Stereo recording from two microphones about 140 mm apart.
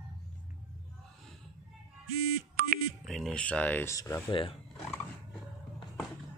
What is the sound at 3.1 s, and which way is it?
Speech, centre (ahead or behind).